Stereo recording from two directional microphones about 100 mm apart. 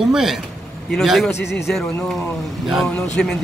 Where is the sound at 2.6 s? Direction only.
Centre (ahead or behind).